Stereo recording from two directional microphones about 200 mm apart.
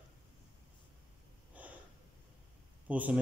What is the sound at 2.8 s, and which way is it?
Speech, 5° right (ahead or behind).